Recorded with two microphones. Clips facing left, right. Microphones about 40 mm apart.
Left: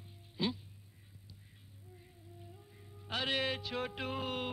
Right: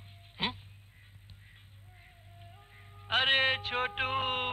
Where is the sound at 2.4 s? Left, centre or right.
Right.